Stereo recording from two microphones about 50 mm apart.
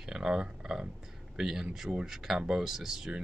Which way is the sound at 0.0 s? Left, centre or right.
Centre.